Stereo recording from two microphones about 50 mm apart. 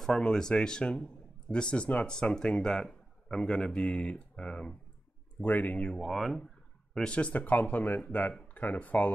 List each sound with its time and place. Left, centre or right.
0.1 s speech: centre
5.4 s speech: left
5.8 s speech: centre
7.1 s speech: left